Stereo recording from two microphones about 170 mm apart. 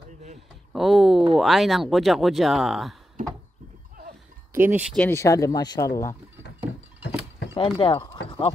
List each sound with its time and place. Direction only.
0.7 s speech: centre (ahead or behind)
4.6 s speech: 10° right (ahead or behind)
4.9 s speech: 5° left (ahead or behind)
5.2 s speech: 20° left (ahead or behind)
7.5 s speech: 30° left (ahead or behind)
8.3 s clip-clop: 35° left (ahead or behind)